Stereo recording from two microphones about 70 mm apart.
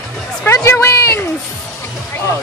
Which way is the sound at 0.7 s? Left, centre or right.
Left.